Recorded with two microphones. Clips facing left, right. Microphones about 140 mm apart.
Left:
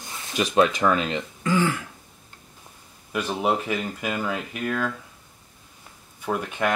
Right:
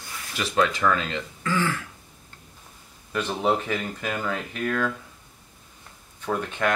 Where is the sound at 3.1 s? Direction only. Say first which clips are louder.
Even; 10° left (ahead or behind).